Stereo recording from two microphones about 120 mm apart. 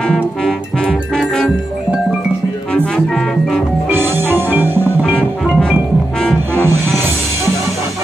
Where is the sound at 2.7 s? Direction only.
5° left (ahead or behind).